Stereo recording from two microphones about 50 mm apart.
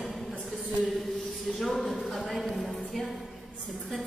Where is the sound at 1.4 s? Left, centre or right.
Centre.